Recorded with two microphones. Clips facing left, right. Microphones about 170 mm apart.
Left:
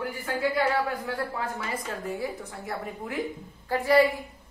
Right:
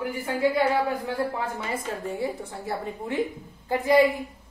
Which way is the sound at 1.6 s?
25° right (ahead or behind).